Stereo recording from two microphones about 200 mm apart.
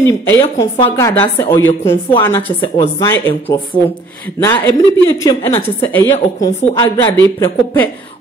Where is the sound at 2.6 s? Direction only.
25° left (ahead or behind).